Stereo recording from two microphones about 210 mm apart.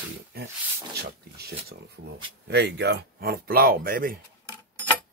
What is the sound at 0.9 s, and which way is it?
Speech, 50° right (ahead or behind).